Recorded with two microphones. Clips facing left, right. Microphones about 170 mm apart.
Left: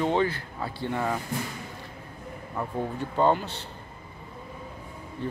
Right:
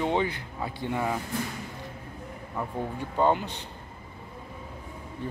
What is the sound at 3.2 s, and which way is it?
Speech, 10° right (ahead or behind).